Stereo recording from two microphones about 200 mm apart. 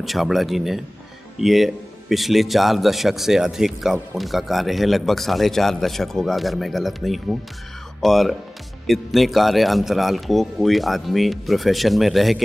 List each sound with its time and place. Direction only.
0.0 s a man's voice: centre (ahead or behind)